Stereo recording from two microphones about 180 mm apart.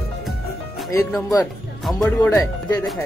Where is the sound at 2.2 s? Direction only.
15° left (ahead or behind).